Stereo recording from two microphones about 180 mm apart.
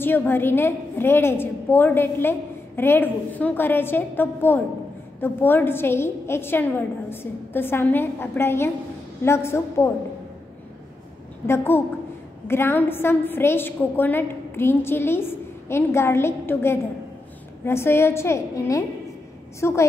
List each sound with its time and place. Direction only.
0.0 s a woman's voice: 10° left (ahead or behind)
11.4 s a woman's voice: 15° left (ahead or behind)